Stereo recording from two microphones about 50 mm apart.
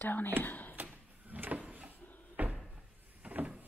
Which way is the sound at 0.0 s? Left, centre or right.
Left.